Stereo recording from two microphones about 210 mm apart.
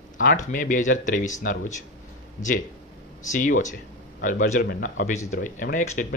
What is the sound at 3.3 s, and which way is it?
Speech, 40° left (ahead or behind).